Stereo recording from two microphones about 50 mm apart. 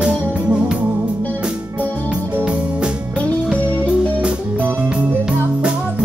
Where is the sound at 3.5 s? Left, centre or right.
Left.